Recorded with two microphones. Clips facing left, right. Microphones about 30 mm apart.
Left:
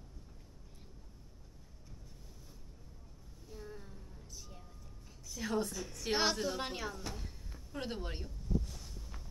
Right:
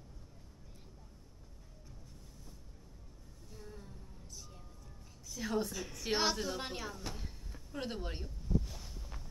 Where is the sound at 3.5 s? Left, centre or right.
Centre.